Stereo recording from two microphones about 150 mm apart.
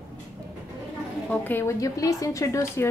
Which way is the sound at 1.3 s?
15° left (ahead or behind).